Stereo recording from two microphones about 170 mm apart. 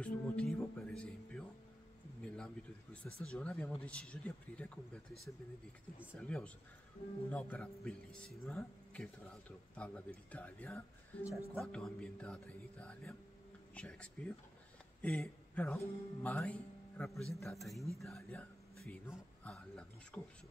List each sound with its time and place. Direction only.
0.0 s music: 5° left (ahead or behind)
2.2 s speech: 5° left (ahead or behind)
6.1 s a man's voice: 5° left (ahead or behind)